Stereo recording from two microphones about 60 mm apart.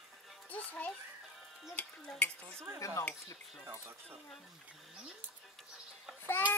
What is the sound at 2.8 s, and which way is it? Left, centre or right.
Speech, left.